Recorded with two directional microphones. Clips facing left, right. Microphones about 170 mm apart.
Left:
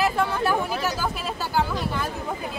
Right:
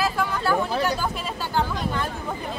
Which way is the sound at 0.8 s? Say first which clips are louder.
Right 1 dB; 5° left (ahead or behind).